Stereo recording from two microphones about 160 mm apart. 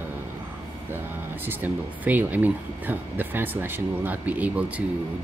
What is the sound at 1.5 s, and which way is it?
Speech, 10° right (ahead or behind).